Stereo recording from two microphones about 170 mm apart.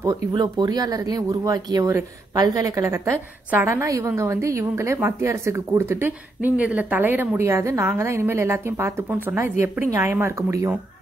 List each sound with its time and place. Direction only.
0.0 s speech: 25° right (ahead or behind)